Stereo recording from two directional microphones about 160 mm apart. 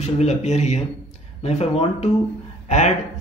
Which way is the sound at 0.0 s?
45° left (ahead or behind).